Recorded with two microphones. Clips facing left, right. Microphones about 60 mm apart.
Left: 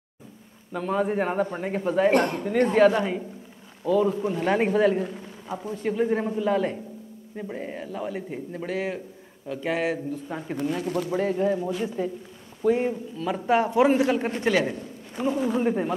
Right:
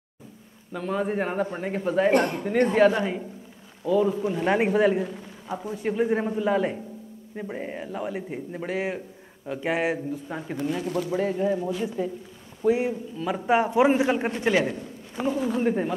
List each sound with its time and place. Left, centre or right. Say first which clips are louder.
0.7 s a man's voice: left 2 dB; centre
10.2 s speech: left 1 dB; centre
12.6 s a man's voice: even; centre